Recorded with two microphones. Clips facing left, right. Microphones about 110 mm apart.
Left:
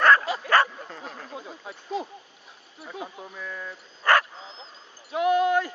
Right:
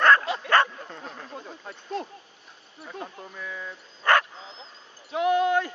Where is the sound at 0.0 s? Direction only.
5° left (ahead or behind).